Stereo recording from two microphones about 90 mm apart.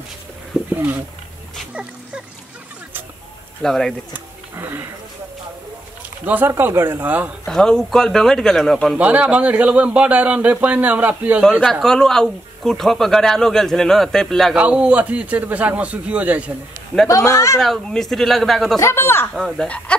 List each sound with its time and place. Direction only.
1.7 s music: 10° right (ahead or behind)
3.6 s speech: 5° left (ahead or behind)
4.1 s speech: 25° right (ahead or behind)
6.2 s speech: 20° right (ahead or behind)
7.4 s speech: 5° left (ahead or behind)
8.9 s a man's voice: 15° right (ahead or behind)
11.6 s speech: 5° left (ahead or behind)
14.5 s a man's voice: 10° right (ahead or behind)
17.1 s speech: 35° left (ahead or behind)
17.6 s speech: 5° left (ahead or behind)
18.8 s speech: 30° left (ahead or behind)
19.3 s speech: 5° left (ahead or behind)